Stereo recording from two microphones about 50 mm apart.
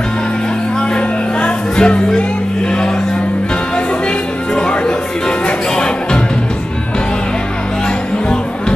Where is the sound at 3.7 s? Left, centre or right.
Centre.